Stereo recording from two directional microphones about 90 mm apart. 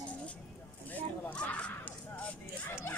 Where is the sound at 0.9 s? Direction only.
15° left (ahead or behind).